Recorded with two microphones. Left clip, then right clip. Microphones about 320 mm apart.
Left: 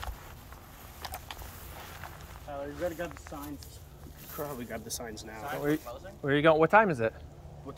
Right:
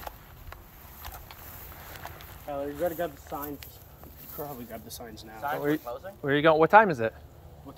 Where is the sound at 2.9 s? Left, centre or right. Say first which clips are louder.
Right 5 dB; centre.